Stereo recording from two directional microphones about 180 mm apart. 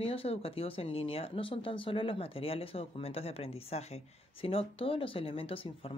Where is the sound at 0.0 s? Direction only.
30° left (ahead or behind).